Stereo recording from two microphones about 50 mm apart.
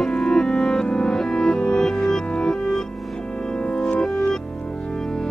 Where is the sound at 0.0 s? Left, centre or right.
Centre.